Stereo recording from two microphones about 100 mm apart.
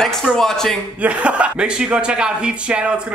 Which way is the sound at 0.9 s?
15° right (ahead or behind).